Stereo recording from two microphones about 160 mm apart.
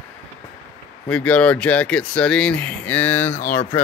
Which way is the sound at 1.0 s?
10° left (ahead or behind).